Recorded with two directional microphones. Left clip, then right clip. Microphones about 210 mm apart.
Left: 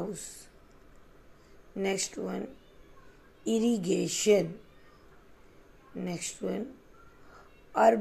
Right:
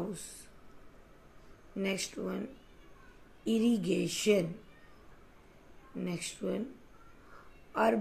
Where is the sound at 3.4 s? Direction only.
20° left (ahead or behind).